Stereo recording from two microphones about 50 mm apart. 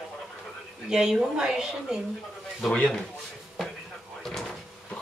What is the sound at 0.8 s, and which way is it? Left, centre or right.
A woman's voice, centre.